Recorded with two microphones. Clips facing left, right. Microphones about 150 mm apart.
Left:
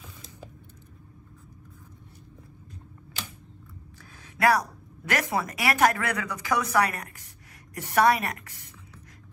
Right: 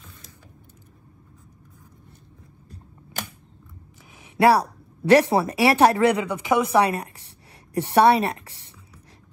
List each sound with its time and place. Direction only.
3.2 s camera: 50° right (ahead or behind)
4.2 s speech: 30° right (ahead or behind)